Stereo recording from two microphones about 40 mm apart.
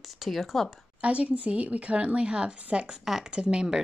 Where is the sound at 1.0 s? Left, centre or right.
Right.